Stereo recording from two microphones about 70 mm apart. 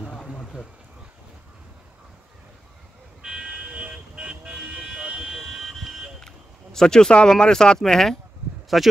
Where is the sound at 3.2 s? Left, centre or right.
Centre.